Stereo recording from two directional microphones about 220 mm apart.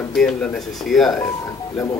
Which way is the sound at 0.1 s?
Centre (ahead or behind).